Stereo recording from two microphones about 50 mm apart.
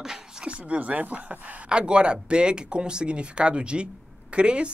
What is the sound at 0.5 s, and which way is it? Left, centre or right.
Speech, right.